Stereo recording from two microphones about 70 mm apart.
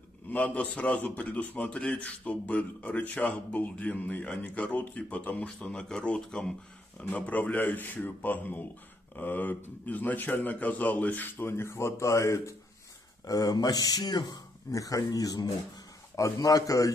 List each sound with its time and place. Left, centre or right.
0.3 s a man's voice: left
7.1 s a man's voice: left
13.2 s speech: left
14.7 s speech: left
16.2 s speech: left